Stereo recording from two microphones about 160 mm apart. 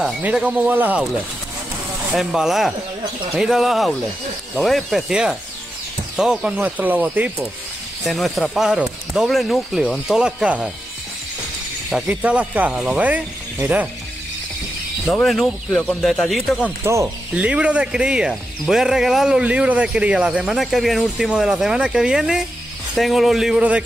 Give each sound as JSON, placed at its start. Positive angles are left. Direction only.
{"t": 0.0, "sound": "speech", "side_deg": -5}
{"t": 2.1, "sound": "speech", "side_deg": 0}
{"t": 8.0, "sound": "speech", "side_deg": 0}
{"t": 11.9, "sound": "speech", "side_deg": -5}
{"t": 15.0, "sound": "speech", "side_deg": 0}
{"t": 16.8, "sound": "speech", "side_deg": -20}
{"t": 17.3, "sound": "speech", "side_deg": -5}